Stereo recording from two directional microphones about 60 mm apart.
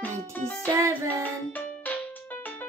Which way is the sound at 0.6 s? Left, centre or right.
Right.